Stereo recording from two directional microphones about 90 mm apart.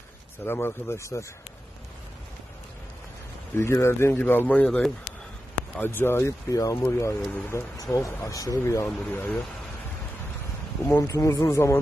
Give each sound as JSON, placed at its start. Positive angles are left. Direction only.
{"t": 0.5, "sound": "speech", "side_deg": 25}
{"t": 3.5, "sound": "speech", "side_deg": 30}
{"t": 7.8, "sound": "speech", "side_deg": 35}
{"t": 9.1, "sound": "speech", "side_deg": 20}
{"t": 10.9, "sound": "speech", "side_deg": 35}